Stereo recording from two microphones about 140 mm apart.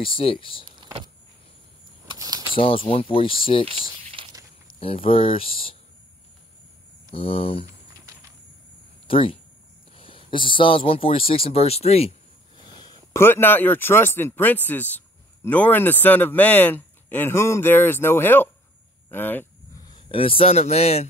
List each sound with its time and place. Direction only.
0.0 s speech: 40° left (ahead or behind)
0.7 s vehicle: 30° right (ahead or behind)
2.0 s a sound: 25° right (ahead or behind)
2.5 s speech: 40° left (ahead or behind)
4.2 s a sound: 40° right (ahead or behind)
4.7 s speech: 40° left (ahead or behind)
7.1 s speech: 40° left (ahead or behind)
9.0 s speech: 40° left (ahead or behind)
12.8 s a sound: 30° left (ahead or behind)
13.2 s speech: 15° left (ahead or behind)
19.0 s a sound: 15° left (ahead or behind)
19.8 s a man's voice: 35° left (ahead or behind)